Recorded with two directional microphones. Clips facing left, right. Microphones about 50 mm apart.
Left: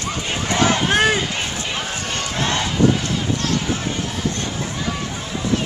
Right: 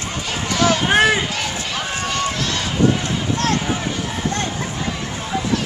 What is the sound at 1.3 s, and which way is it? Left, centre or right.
Run, left.